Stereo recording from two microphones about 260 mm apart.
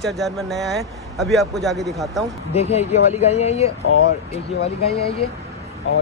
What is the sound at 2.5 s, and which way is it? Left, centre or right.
Speech, left.